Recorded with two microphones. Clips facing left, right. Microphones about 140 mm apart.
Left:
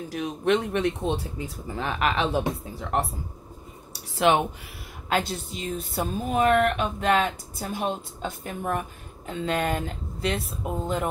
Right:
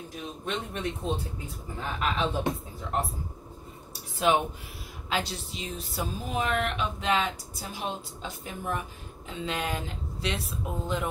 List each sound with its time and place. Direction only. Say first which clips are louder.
0.1 s speech: left 11 dB; 80° left
3.9 s a sound: left 4 dB; 75° left (ahead or behind)
5.1 s speech: left 5 dB; 50° left (ahead or behind)